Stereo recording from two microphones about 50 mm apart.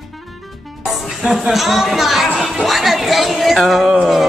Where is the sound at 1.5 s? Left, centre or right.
Centre.